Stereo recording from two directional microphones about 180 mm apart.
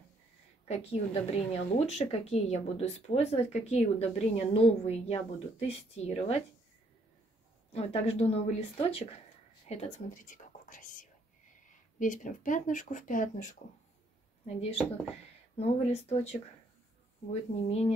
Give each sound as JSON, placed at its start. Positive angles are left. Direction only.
{"t": 0.7, "sound": "a woman's voice", "side_deg": 35}
{"t": 7.7, "sound": "a woman's voice", "side_deg": 35}
{"t": 14.4, "sound": "a woman's voice", "side_deg": 35}